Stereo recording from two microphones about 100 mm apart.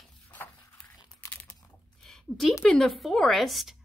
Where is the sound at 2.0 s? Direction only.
5° left (ahead or behind).